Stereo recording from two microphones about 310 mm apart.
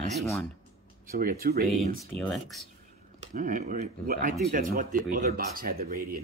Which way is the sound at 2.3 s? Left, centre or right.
Centre.